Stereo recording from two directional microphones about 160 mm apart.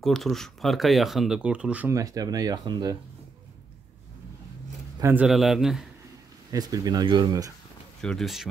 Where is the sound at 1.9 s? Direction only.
20° right (ahead or behind).